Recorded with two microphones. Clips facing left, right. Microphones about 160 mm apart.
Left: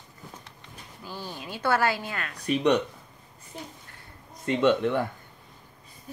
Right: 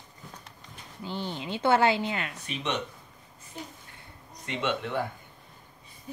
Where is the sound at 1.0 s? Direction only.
25° right (ahead or behind).